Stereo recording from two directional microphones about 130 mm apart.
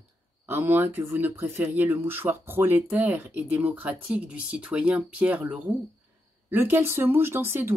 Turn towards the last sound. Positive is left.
turn(degrees=-20)  # may be behind; listen again after turning